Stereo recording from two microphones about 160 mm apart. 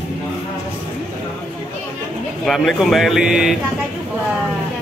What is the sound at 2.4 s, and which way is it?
Speech, centre (ahead or behind).